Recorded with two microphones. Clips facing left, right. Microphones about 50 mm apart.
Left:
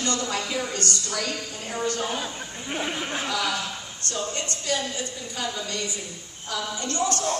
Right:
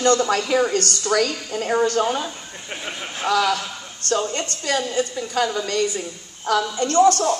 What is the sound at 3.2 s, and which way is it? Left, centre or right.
A woman's voice, right.